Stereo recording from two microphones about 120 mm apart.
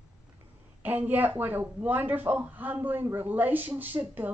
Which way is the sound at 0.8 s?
15° right (ahead or behind).